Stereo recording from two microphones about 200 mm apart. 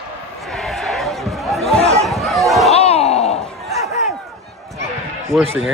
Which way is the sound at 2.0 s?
Centre (ahead or behind).